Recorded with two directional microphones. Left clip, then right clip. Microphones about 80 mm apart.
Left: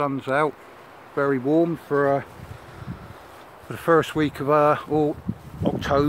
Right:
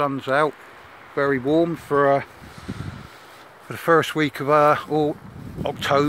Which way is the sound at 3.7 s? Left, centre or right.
Centre.